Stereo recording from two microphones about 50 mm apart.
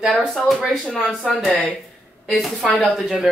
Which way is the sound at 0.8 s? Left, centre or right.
Left.